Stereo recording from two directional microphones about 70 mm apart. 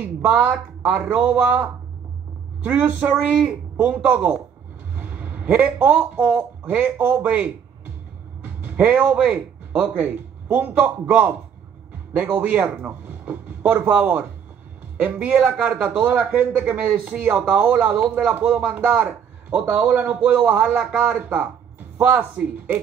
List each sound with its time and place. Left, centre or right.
0.0 s a man's voice: right